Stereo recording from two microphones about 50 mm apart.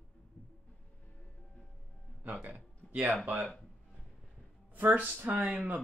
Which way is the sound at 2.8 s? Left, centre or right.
Left.